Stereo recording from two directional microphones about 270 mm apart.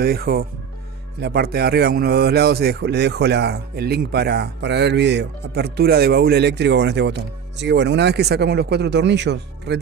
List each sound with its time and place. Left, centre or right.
0.0 s a man's voice: right